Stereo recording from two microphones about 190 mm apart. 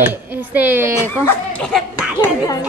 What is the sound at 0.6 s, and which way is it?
Speech, 10° right (ahead or behind).